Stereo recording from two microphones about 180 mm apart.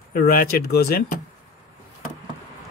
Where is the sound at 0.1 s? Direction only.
55° left (ahead or behind).